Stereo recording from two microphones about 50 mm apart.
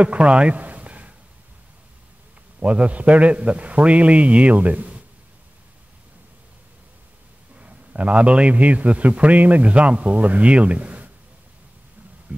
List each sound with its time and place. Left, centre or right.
0.0 s a sound: right
2.6 s a man's voice: right
7.5 s a man's voice: right
12.3 s speech: right